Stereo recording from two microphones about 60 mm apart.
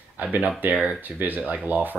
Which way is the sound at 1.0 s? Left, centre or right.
Right.